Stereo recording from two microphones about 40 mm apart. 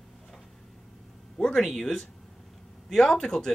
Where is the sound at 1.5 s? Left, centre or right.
Centre.